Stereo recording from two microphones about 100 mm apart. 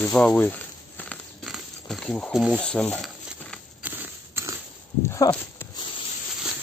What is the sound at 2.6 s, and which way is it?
Speech, 10° left (ahead or behind).